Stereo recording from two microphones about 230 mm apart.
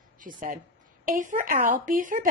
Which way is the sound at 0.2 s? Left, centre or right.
Right.